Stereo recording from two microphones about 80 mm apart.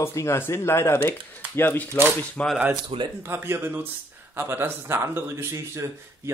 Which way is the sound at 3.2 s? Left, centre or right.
Right.